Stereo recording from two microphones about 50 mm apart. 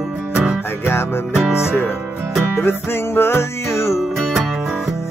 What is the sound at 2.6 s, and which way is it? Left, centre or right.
Music, left.